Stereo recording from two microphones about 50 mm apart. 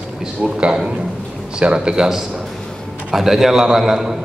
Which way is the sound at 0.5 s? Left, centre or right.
Centre.